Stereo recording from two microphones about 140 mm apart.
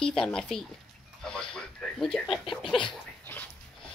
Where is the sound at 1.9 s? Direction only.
5° left (ahead or behind).